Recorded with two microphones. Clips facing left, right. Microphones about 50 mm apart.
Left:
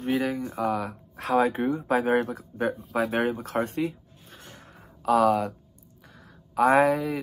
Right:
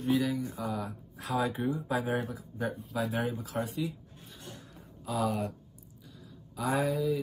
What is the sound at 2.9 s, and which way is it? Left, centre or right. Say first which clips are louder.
Speech: left 7 dB; left.